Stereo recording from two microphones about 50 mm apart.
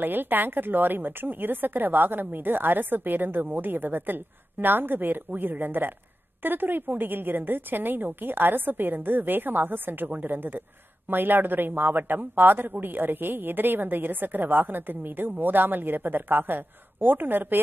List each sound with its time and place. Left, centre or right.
0.0 s speech: right